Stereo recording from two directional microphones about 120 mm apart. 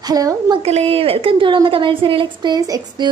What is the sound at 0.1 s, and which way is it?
Speech, 30° right (ahead or behind).